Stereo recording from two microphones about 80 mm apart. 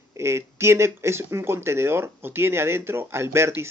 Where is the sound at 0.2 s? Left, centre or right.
Right.